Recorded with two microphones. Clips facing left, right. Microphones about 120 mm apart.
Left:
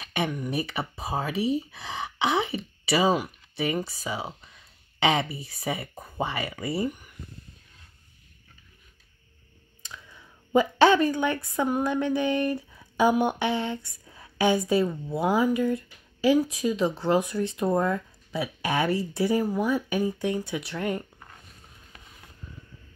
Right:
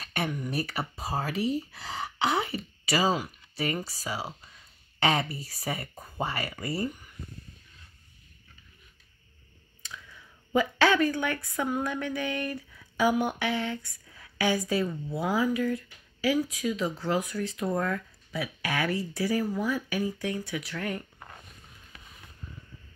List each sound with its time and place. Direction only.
0.0 s a sound: 15° left (ahead or behind)
0.5 s speech: 20° left (ahead or behind)
5.8 s speech: centre (ahead or behind)
6.1 s speech: 20° left (ahead or behind)
9.8 s speech: 20° left (ahead or behind)